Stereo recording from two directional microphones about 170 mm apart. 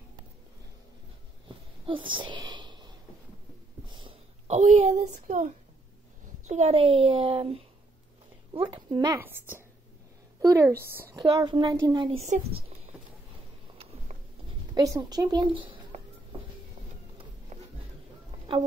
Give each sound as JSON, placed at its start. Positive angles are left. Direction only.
{"t": 1.9, "sound": "a child's voice", "side_deg": -30}
{"t": 3.9, "sound": "a sound", "side_deg": -30}
{"t": 4.5, "sound": "a child's voice", "side_deg": -45}
{"t": 9.2, "sound": "a woman's voice", "side_deg": -10}
{"t": 12.2, "sound": "a child's voice", "side_deg": -40}
{"t": 14.7, "sound": "speech", "side_deg": -20}
{"t": 17.5, "sound": "a sound", "side_deg": -40}
{"t": 18.5, "sound": "a woman's voice", "side_deg": -30}